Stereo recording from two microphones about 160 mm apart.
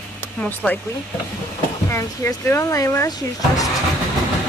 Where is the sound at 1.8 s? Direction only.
15° left (ahead or behind).